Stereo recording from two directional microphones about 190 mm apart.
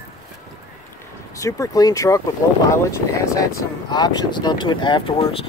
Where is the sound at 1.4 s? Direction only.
20° left (ahead or behind).